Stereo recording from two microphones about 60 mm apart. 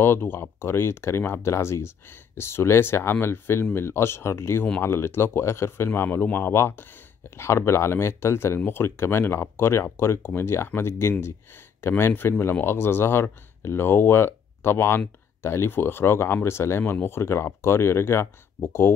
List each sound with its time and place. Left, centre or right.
0.0 s speech: left